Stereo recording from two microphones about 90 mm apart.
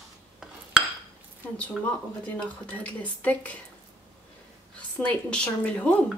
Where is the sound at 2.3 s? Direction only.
15° left (ahead or behind).